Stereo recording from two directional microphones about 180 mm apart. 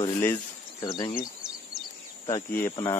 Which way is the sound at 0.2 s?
15° left (ahead or behind).